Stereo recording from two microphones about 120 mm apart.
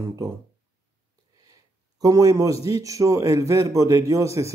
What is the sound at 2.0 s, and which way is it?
A man's voice, 30° right (ahead or behind).